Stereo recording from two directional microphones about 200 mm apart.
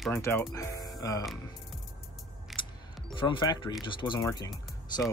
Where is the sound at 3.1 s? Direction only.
25° left (ahead or behind).